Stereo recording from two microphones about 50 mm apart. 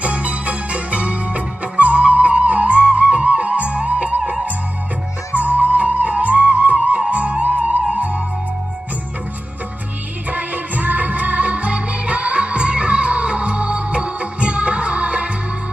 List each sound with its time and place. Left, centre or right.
0.0 s music: right
5.3 s music: right
10.3 s music: right